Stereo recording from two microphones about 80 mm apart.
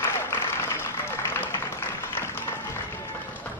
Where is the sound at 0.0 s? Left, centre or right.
Left.